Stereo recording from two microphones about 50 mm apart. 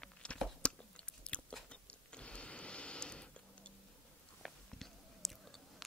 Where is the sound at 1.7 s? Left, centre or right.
Left.